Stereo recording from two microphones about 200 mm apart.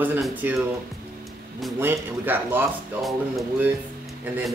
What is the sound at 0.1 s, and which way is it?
Speech, 10° right (ahead or behind).